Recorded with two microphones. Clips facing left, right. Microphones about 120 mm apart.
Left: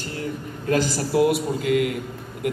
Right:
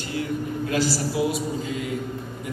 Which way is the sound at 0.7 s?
45° left (ahead or behind).